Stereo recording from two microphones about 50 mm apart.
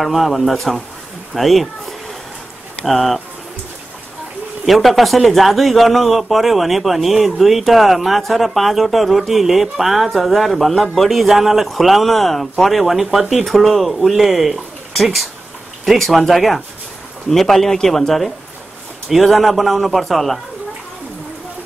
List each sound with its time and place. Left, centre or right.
0.0 s a man's voice: centre
4.6 s a man's voice: centre